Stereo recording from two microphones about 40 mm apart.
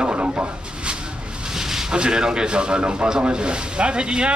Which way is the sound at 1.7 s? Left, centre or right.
Centre.